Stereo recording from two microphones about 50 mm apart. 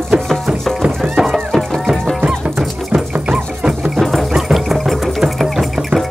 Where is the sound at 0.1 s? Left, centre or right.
Right.